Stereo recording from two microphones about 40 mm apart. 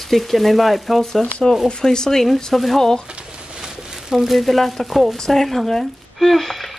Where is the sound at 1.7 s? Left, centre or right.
Centre.